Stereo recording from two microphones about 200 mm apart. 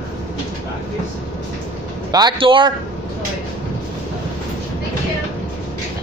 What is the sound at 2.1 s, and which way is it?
Speech, 20° right (ahead or behind).